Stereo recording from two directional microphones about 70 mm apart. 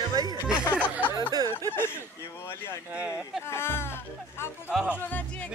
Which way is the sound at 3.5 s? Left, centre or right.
Left.